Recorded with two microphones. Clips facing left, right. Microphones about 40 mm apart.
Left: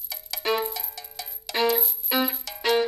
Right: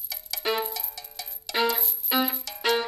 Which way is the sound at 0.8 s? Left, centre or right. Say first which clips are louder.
Left 2 dB; centre.